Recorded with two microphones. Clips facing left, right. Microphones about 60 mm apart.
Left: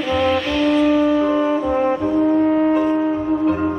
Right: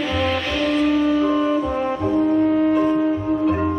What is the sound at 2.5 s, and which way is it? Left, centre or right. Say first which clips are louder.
Shofar: left 1 dB; left.